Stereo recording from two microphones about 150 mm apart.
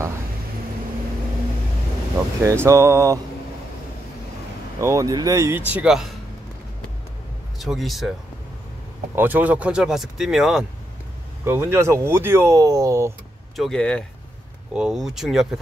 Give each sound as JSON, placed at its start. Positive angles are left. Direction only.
{"t": 2.4, "sound": "speech", "side_deg": -20}
{"t": 4.7, "sound": "speech", "side_deg": -20}
{"t": 5.7, "sound": "speech", "side_deg": -5}
{"t": 7.5, "sound": "speech", "side_deg": 0}
{"t": 9.1, "sound": "speech", "side_deg": -10}
{"t": 11.4, "sound": "speech", "side_deg": -15}
{"t": 13.6, "sound": "speech", "side_deg": 5}
{"t": 14.7, "sound": "speech", "side_deg": -5}